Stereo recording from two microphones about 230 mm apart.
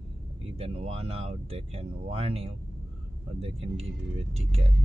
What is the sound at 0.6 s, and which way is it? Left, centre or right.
Speech, right.